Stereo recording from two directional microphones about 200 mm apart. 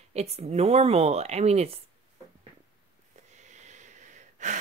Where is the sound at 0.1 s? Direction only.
30° right (ahead or behind).